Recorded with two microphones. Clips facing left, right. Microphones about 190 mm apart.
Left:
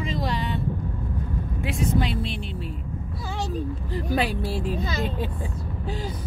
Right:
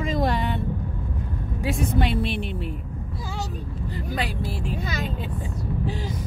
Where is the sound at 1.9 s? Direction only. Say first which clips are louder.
Right 3 dB; 60° right (ahead or behind).